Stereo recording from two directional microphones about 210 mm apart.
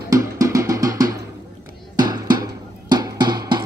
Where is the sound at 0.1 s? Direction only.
15° right (ahead or behind).